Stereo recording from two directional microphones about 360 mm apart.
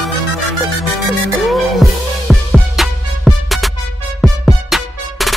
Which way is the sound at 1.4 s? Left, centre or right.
Centre.